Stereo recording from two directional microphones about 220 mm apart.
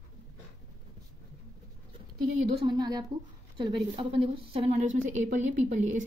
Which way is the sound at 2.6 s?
20° right (ahead or behind).